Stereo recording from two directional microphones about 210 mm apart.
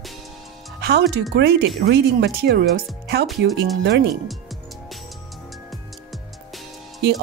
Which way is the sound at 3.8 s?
55° right (ahead or behind).